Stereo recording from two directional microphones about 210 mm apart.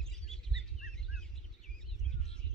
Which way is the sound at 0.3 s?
Centre (ahead or behind).